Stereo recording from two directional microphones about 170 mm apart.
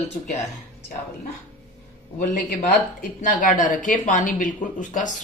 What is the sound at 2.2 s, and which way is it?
Speech, 45° left (ahead or behind).